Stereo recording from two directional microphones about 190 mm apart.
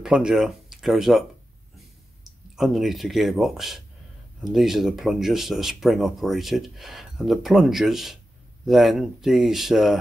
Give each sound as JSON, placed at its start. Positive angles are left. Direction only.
{"t": 0.0, "sound": "speech", "side_deg": -5}
{"t": 2.2, "sound": "speech", "side_deg": 0}